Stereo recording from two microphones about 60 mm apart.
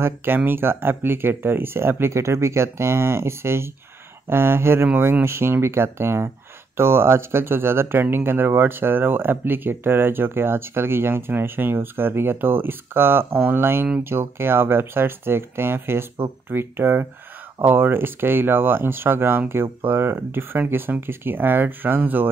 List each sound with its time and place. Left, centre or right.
0.0 s speech: right